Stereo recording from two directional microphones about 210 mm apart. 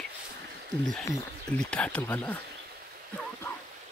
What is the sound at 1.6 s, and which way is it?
Speech, 5° left (ahead or behind).